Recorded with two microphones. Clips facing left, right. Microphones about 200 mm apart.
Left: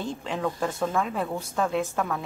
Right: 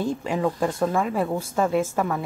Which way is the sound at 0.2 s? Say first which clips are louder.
Right 5 dB; 10° right (ahead or behind).